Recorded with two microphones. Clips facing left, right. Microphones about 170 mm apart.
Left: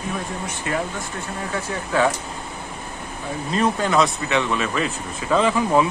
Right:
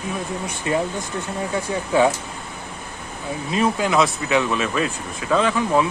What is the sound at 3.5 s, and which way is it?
Speech, 5° right (ahead or behind).